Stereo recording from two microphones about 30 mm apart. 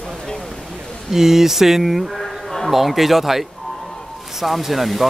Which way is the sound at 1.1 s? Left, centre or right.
Centre.